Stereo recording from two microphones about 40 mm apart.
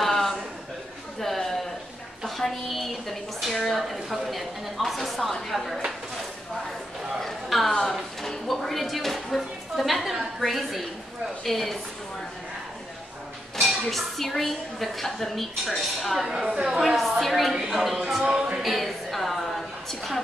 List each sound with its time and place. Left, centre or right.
0.0 s a sound: centre
2.2 s speech: centre
7.2 s a sound: centre
8.5 s a woman's voice: centre
13.6 s speech: centre
16.5 s speech: centre
18.2 s music: right
18.6 s a woman's voice: centre